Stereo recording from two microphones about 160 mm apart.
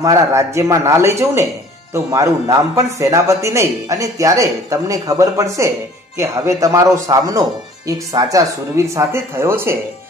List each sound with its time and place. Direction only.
0.0 s speech: 20° right (ahead or behind)